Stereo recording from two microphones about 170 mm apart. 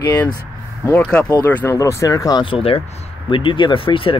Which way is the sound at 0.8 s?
10° left (ahead or behind).